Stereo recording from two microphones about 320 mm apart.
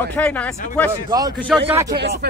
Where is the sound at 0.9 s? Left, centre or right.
Centre.